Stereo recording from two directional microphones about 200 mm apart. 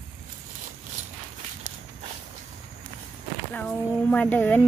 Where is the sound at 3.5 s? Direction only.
5° left (ahead or behind).